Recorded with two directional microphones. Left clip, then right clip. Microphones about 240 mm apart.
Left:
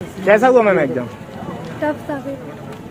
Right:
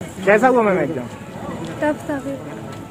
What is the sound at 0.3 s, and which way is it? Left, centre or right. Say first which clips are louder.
Speech: left 3 dB; left.